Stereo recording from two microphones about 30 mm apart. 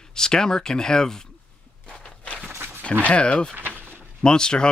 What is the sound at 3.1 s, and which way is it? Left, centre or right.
Speech, left.